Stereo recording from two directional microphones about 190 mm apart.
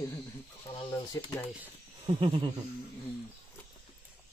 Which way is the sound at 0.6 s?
25° left (ahead or behind).